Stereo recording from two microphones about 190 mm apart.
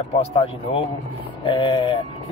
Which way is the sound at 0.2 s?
30° left (ahead or behind).